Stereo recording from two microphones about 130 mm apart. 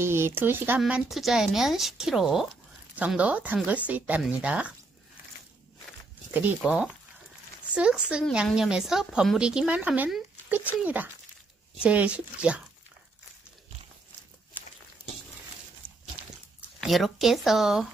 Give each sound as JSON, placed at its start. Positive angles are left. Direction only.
{"t": 0.0, "sound": "a woman's voice", "side_deg": -20}
{"t": 6.6, "sound": "a woman's voice", "side_deg": -10}
{"t": 16.8, "sound": "a woman's voice", "side_deg": 0}